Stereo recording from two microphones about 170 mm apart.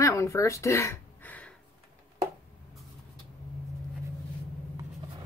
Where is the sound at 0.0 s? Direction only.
20° left (ahead or behind).